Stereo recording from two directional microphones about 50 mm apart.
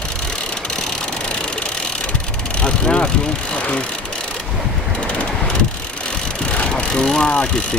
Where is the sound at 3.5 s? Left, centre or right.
Left.